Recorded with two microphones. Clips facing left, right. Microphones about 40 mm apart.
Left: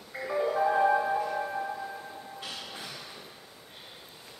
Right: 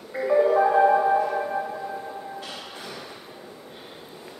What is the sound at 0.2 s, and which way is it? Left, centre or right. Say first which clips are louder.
Music: right 9 dB; right.